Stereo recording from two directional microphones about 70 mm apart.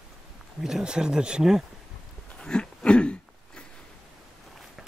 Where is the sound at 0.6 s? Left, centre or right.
Centre.